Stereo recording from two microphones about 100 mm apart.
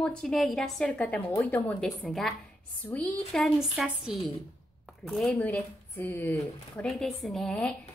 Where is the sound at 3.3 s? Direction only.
5° right (ahead or behind).